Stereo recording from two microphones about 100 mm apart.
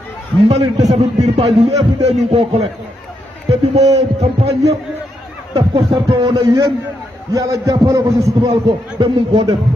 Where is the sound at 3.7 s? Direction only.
90° right.